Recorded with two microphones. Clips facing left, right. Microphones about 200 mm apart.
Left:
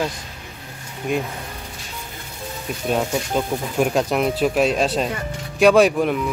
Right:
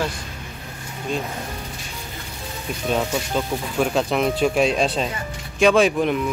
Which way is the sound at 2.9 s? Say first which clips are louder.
Left 1 dB; 10° left (ahead or behind).